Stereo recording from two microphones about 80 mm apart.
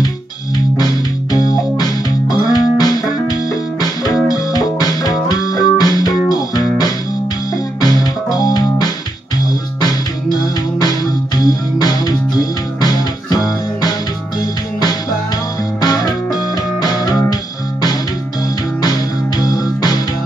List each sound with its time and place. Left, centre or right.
0.7 s music: left
7.8 s music: left
10.4 s music: left
14.4 s music: left
18.8 s music: left